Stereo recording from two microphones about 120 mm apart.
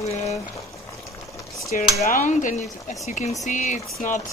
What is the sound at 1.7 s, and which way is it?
Speech, 90° left.